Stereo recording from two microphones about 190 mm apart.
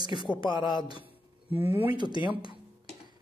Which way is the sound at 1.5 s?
10° right (ahead or behind).